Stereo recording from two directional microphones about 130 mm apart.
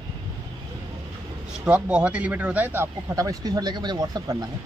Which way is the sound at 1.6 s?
10° right (ahead or behind).